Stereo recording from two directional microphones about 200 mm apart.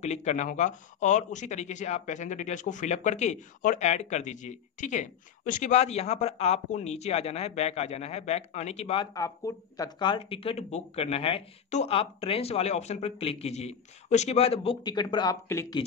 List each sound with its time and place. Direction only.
0.0 s speech: 35° left (ahead or behind); by 15.8 s 15° left (ahead or behind)